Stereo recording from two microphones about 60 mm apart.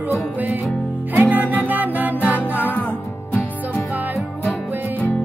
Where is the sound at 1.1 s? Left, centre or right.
Right.